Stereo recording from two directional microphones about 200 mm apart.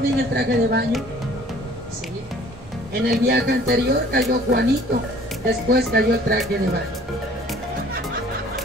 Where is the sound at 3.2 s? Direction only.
55° right (ahead or behind).